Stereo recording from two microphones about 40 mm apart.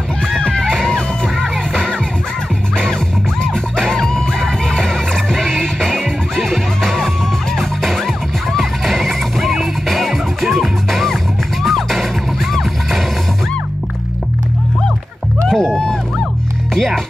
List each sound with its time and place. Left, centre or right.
0.3 s music: centre
3.7 s music: centre
15.4 s music: centre